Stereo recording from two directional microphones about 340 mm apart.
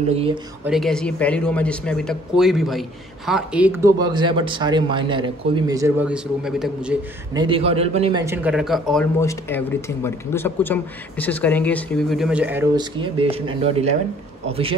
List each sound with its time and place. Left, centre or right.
0.1 s speech: centre
0.7 s speech: centre
7.4 s speech: centre